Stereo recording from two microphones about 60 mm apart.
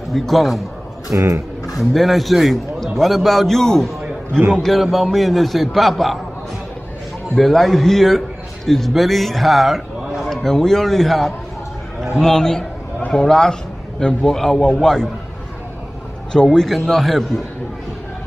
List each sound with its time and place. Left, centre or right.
0.1 s a man's voice: centre
1.1 s speech: right
1.8 s a man's voice: centre
7.3 s a man's voice: centre
16.3 s a man's voice: centre